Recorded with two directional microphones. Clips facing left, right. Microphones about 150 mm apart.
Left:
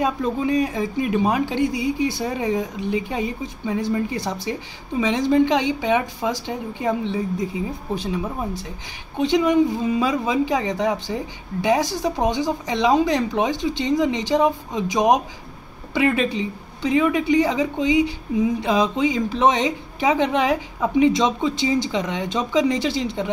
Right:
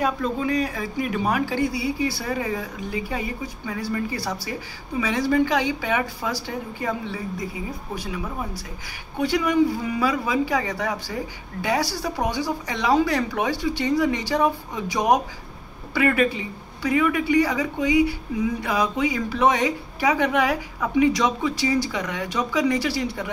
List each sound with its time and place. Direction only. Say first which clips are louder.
0.0 s a woman's voice: left 2 dB; 20° left (ahead or behind)